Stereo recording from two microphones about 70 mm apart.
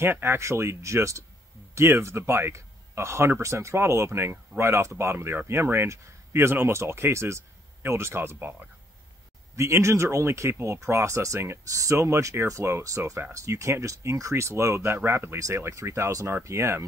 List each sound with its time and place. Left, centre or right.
0.0 s speech: right
9.6 s speech: right